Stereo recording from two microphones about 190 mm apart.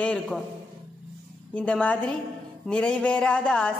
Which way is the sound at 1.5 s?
5° left (ahead or behind).